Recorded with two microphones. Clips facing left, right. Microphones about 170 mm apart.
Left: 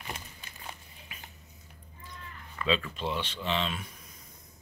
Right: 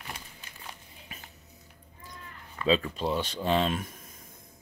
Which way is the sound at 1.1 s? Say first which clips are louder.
Right 2 dB; 40° right (ahead or behind).